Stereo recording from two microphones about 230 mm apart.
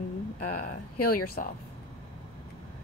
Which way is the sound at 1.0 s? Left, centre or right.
Left.